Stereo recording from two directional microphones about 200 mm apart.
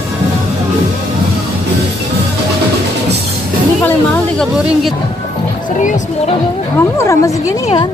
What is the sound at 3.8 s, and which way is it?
Music, 10° left (ahead or behind).